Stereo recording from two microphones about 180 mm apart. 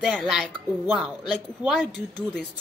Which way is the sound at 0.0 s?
Centre (ahead or behind).